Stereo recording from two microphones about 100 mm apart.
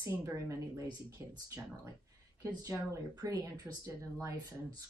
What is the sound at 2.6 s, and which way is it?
Speech, 35° right (ahead or behind).